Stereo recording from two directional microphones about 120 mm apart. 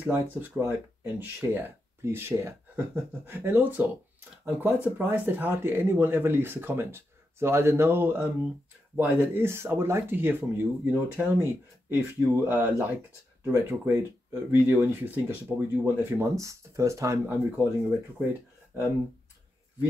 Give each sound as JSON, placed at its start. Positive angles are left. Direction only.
{"t": 0.0, "sound": "speech", "side_deg": -15}
{"t": 17.3, "sound": "speech", "side_deg": -15}